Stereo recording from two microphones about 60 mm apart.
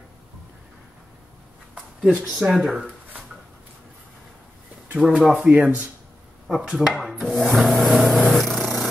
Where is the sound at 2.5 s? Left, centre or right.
Centre.